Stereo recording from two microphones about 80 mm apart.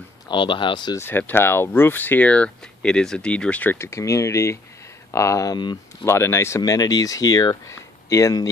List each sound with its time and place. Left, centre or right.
0.3 s speech: left
0.9 s speech: left
3.7 s speech: left
6.0 s speech: left
6.6 s speech: left